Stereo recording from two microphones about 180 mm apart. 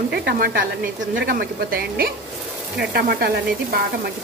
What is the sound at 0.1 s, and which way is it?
Speech, 65° right (ahead or behind).